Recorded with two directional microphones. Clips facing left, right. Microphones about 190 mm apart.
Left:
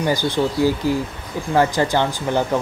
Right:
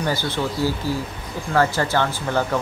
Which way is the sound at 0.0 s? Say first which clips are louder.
Left 4 dB; 15° left (ahead or behind).